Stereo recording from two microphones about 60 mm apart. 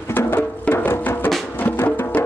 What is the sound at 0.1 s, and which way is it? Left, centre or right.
Music, left.